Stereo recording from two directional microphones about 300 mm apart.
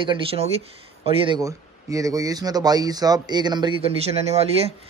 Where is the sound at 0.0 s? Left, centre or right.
Centre.